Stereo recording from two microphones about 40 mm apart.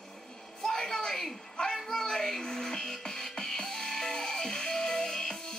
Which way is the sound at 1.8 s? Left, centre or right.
Centre.